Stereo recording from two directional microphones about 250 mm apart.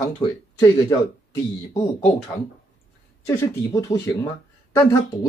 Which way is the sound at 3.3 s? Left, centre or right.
Centre.